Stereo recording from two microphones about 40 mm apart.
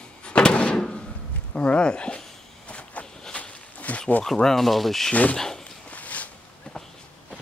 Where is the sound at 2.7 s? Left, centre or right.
Left.